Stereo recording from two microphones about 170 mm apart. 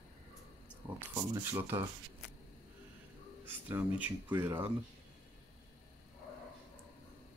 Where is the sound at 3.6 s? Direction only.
10° right (ahead or behind).